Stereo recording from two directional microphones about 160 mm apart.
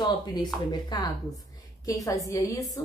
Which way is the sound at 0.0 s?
25° left (ahead or behind).